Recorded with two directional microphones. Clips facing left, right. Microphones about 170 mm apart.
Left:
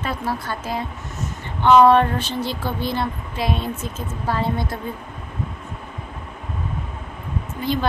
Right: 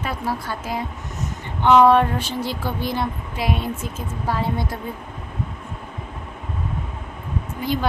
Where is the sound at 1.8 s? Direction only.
10° right (ahead or behind).